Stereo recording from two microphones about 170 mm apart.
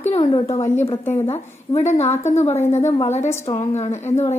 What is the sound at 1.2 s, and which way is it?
A woman's voice, 35° left (ahead or behind).